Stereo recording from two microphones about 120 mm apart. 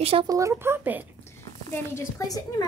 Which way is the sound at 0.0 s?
50° right (ahead or behind).